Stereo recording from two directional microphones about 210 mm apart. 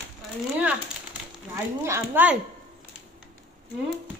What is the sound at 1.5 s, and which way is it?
Speech, 10° right (ahead or behind).